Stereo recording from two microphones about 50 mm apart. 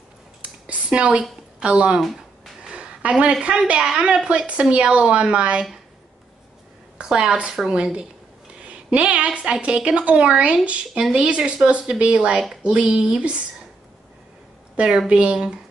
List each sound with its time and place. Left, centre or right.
0.4 s a sound: right
1.6 s a woman's voice: right
2.6 s a sound: centre
3.8 s a woman's voice: centre
7.0 s a woman's voice: centre
15.0 s a woman's voice: right